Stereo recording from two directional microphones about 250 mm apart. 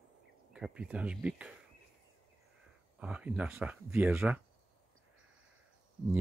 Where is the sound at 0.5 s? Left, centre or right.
Centre.